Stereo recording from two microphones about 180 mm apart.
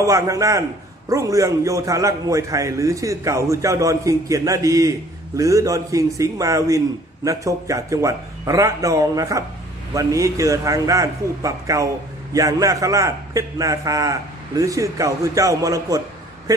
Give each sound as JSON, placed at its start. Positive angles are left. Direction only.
{"t": 0.0, "sound": "a man's voice", "side_deg": -20}